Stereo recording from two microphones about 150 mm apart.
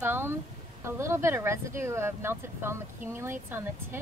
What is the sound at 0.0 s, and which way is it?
Speech, 15° right (ahead or behind).